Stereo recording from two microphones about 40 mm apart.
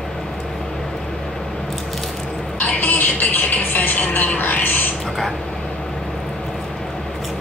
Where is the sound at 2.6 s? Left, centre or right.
Left.